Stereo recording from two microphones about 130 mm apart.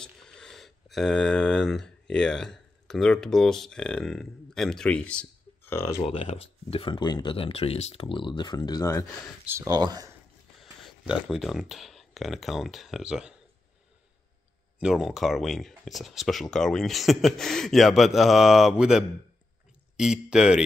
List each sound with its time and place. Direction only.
0.0 s speech: 5° left (ahead or behind); by 6.0 s 20° left (ahead or behind)
6.0 s speech: 50° left (ahead or behind); by 7.3 s 35° left (ahead or behind)
7.3 s speech: 50° left (ahead or behind); by 8.9 s 30° left (ahead or behind)
9.5 s speech: 25° right (ahead or behind)
10.6 s speech: centre (ahead or behind)
14.8 s speech: 5° right (ahead or behind)